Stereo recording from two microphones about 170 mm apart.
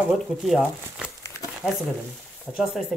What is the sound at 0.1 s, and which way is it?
Speech, centre (ahead or behind).